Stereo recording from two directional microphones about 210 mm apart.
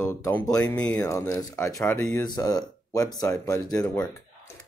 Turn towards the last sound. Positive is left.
turn(degrees=15)  # may be behind; listen again after turning